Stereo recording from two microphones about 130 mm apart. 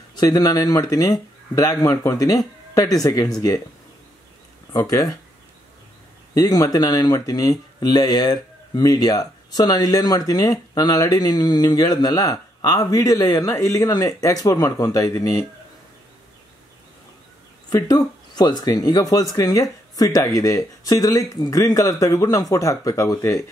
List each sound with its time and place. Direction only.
0.1 s speech: 30° left (ahead or behind)
4.7 s speech: 25° left (ahead or behind)
6.3 s speech: 25° left (ahead or behind)
17.6 s speech: 30° left (ahead or behind)